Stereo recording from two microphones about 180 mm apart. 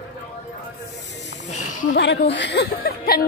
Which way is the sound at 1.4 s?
40° left (ahead or behind).